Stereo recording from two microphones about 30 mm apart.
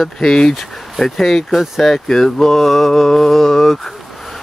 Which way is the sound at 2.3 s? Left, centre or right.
Centre.